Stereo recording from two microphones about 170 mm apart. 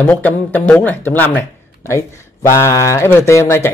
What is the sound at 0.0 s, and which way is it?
Speech, 10° left (ahead or behind).